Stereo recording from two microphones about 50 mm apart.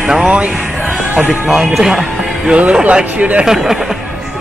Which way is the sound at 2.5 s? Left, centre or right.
Right.